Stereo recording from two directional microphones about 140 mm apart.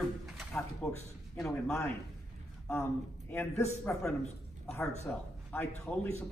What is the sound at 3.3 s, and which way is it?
Speech, 20° left (ahead or behind).